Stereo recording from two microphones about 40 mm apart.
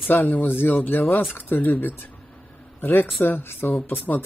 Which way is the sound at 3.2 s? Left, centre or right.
Left.